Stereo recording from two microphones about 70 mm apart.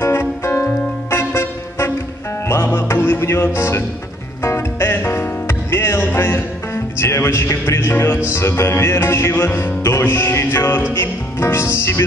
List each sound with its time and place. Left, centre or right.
0.0 s music: left